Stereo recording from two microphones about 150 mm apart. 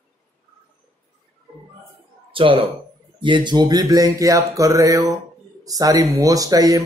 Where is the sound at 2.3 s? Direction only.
35° right (ahead or behind).